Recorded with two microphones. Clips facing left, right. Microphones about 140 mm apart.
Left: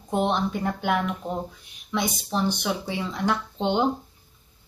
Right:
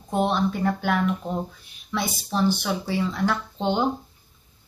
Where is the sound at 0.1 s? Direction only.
20° left (ahead or behind).